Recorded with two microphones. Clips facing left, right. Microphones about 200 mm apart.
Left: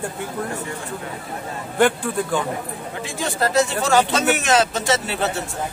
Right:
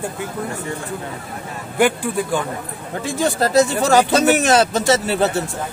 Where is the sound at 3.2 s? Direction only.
35° right (ahead or behind).